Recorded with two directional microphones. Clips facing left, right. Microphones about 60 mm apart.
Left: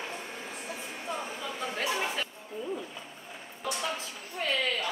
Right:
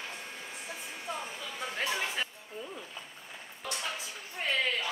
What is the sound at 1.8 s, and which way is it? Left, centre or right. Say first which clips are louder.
Chatter: left 3 dB; left.